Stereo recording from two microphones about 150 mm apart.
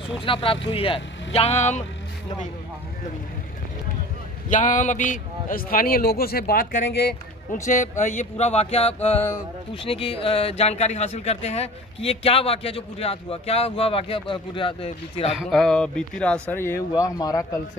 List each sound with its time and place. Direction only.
0.2 s speech: 35° left (ahead or behind)
4.5 s a man's voice: 55° left (ahead or behind); by 7.2 s 90° left
7.6 s speech: 55° left (ahead or behind)
8.2 s a sound: 45° left (ahead or behind)
9.8 s speech: 40° left (ahead or behind)
15.3 s speech: 5° left (ahead or behind)
16.4 s speech: 15° left (ahead or behind)